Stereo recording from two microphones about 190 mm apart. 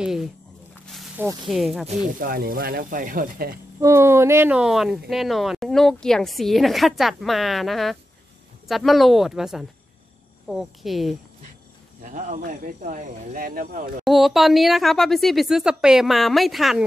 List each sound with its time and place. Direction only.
0.0 s speech: centre (ahead or behind)
0.9 s snake: 10° right (ahead or behind)
1.5 s speech: centre (ahead or behind)
1.9 s speech: 45° right (ahead or behind)
3.8 s speech: 15° right (ahead or behind)
12.0 s speech: 40° right (ahead or behind)
14.0 s speech: centre (ahead or behind)